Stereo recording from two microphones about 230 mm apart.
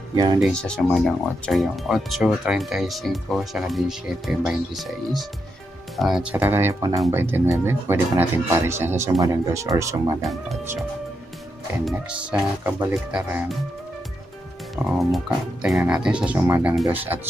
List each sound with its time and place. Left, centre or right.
0.1 s speech: centre
0.4 s speech: centre
11.8 s speech: centre
14.9 s speech: centre